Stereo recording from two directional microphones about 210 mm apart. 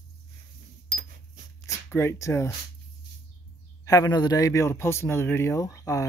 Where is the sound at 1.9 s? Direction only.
10° left (ahead or behind).